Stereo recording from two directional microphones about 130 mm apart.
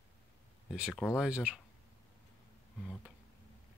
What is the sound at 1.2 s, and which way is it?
Speech, 5° right (ahead or behind).